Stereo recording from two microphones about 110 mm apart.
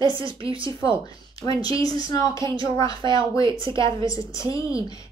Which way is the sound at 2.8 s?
45° right (ahead or behind).